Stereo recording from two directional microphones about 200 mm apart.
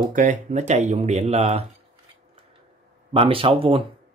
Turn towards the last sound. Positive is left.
turn(degrees=-25)  # may be behind; listen again after turning